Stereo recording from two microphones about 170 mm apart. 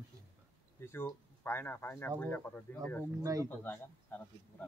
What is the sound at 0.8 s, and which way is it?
Speech, 15° left (ahead or behind).